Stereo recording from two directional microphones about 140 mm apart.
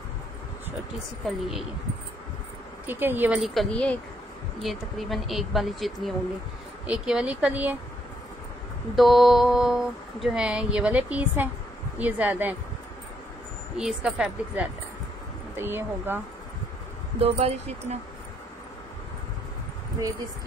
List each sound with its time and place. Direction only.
1.2 s speech: centre (ahead or behind)
2.9 s speech: 15° right (ahead or behind)
3.4 s speech: 5° left (ahead or behind)
8.9 s speech: centre (ahead or behind)
13.7 s speech: 5° right (ahead or behind)
17.2 s speech: 50° right (ahead or behind)